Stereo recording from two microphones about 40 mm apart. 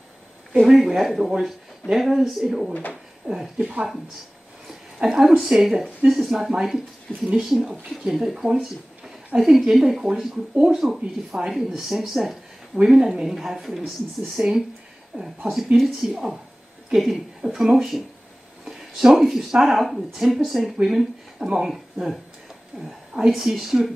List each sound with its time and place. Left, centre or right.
0.7 s speech: centre
3.3 s speech: centre
4.9 s a woman's voice: centre
11.0 s speech: right
11.5 s a woman's voice: centre
12.8 s a woman's voice: centre
18.7 s a sound: centre
19.5 s a woman's voice: centre
21.4 s speech: centre
22.8 s speech: centre